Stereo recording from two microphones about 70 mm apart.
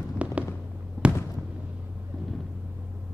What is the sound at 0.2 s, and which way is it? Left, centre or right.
Fireworks, centre.